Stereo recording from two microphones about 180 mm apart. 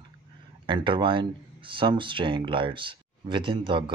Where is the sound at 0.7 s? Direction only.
30° right (ahead or behind).